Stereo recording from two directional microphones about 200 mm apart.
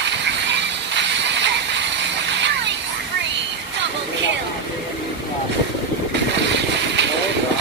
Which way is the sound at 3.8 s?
60° right (ahead or behind).